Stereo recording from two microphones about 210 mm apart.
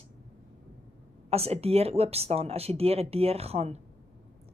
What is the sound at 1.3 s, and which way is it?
A woman's voice, 30° right (ahead or behind).